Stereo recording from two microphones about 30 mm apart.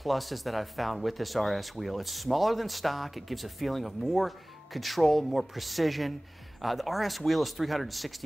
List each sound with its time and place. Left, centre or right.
0.0 s speech: centre